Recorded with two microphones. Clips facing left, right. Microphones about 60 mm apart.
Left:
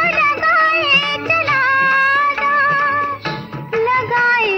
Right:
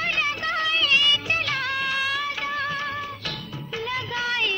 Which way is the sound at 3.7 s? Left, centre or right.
Left.